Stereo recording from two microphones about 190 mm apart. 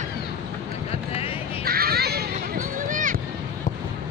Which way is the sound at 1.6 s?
55° right (ahead or behind).